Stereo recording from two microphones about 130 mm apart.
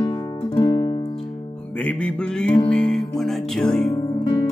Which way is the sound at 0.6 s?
30° left (ahead or behind).